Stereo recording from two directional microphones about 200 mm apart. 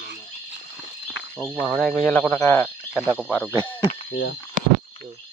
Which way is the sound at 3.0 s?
Centre (ahead or behind).